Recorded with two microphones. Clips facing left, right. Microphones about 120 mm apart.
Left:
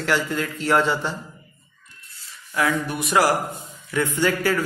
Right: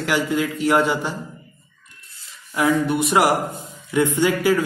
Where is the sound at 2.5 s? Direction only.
25° right (ahead or behind).